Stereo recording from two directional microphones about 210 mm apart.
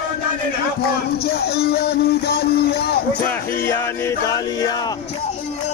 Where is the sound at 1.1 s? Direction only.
50° left (ahead or behind).